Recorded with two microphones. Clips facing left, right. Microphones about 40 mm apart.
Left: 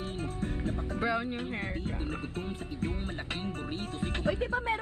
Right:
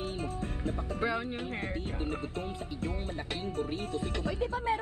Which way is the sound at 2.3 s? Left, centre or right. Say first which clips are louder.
Even; left.